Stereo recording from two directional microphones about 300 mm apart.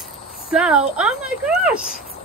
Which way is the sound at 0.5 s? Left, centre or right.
Centre.